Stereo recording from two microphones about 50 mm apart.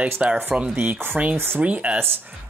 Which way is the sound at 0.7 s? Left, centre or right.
Right.